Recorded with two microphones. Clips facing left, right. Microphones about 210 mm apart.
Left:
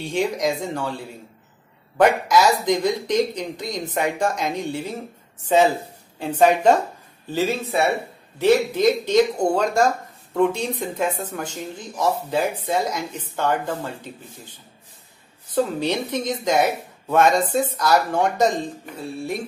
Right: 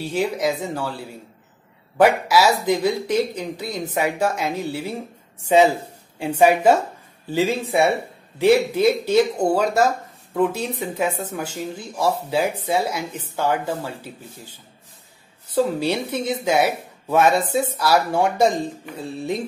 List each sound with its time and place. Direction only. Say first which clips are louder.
0.0 s speech: even; 5° right (ahead or behind)
2.0 s a woman's voice: right 1 dB; 5° right (ahead or behind)
15.5 s speech: right 1 dB; 10° right (ahead or behind)
18.9 s music: right 2 dB; 20° right (ahead or behind)